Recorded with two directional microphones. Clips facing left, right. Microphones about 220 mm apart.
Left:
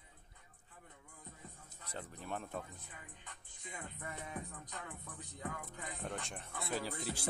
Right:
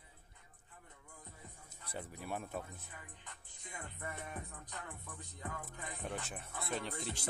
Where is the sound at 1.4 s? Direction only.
15° right (ahead or behind).